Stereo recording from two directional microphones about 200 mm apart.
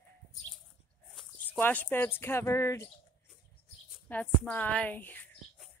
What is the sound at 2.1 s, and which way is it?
Speech, 10° left (ahead or behind).